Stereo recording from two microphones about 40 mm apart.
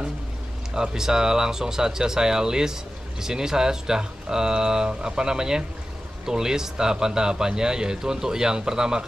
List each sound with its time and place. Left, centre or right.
0.7 s speech: centre